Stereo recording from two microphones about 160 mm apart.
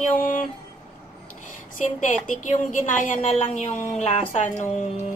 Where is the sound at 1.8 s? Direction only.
55° left (ahead or behind).